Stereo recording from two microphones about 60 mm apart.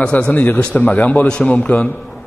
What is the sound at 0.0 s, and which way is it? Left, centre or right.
A man's voice, centre.